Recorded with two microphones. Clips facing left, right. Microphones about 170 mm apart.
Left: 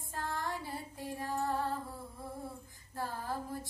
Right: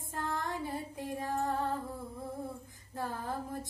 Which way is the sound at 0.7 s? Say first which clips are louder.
Right 4 dB; 20° right (ahead or behind).